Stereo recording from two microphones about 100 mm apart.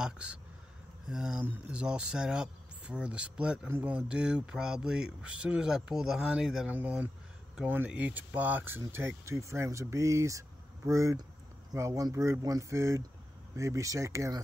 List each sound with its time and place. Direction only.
0.0 s speech: 10° right (ahead or behind)
6.7 s speech: 15° right (ahead or behind); by 14.4 s 30° right (ahead or behind)